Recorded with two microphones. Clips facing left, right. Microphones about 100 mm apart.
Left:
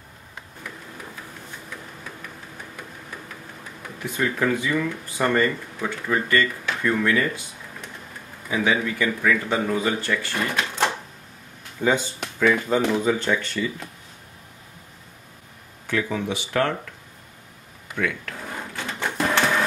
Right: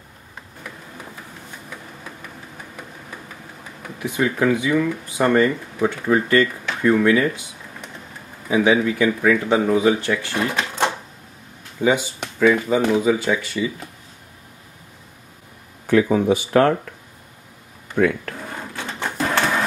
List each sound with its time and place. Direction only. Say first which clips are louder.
4.0 s speech: right 4 dB; 10° right (ahead or behind)
11.8 s speech: right 3 dB; 10° right (ahead or behind)
15.9 s speech: right 9 dB; 40° right (ahead or behind)
17.9 s a sound: right 8 dB; 45° right (ahead or behind)
19.0 s printer: right 1 dB; 5° right (ahead or behind)